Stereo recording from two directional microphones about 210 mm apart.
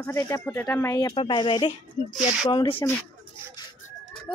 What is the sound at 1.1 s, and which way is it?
Speech, 25° left (ahead or behind).